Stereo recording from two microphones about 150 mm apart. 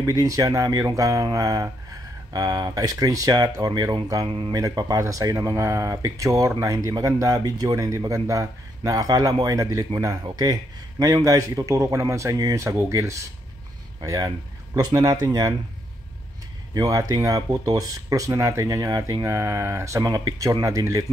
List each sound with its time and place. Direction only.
0.0 s speech: 25° right (ahead or behind)
16.7 s speech: 25° right (ahead or behind)